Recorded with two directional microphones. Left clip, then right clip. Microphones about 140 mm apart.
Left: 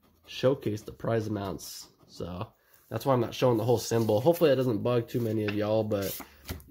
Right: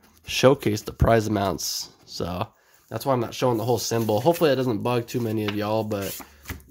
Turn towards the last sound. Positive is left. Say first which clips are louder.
# right 3 dB
turn(degrees=-10)  # may be behind; listen again after turning